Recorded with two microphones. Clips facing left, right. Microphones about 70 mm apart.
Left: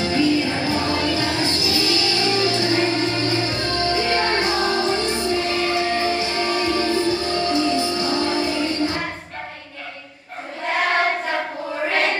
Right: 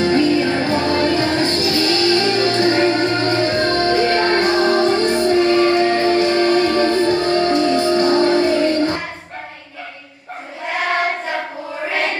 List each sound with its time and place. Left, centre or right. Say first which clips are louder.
0.0 s music: right 4 dB; right
10.7 s choir: even; centre